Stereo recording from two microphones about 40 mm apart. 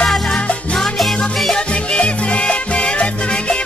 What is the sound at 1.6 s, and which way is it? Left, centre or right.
Music, left.